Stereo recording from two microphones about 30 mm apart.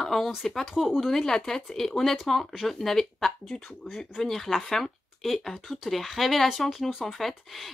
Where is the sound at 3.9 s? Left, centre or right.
Centre.